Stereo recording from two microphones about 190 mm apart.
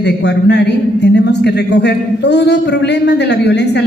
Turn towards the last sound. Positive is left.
turn(degrees=65)  # may be behind; listen again after turning